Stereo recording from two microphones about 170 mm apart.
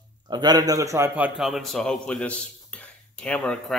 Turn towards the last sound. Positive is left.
turn(degrees=5)  # may be behind; listen again after turning